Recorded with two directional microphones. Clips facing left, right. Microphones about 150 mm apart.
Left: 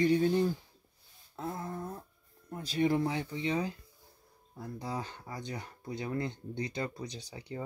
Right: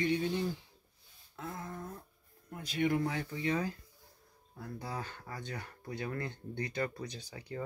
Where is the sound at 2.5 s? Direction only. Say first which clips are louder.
Left 3 dB; 30° left (ahead or behind).